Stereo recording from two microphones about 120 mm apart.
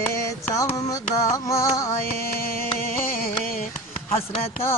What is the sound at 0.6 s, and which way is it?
Music, 30° left (ahead or behind).